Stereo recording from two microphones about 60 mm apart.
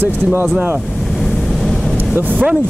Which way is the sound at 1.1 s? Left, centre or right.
Centre.